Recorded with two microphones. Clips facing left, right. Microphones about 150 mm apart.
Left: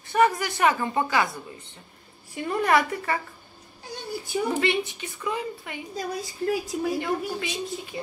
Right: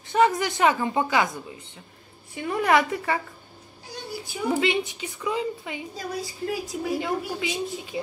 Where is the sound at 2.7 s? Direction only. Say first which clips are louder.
Right 2 dB; 15° right (ahead or behind).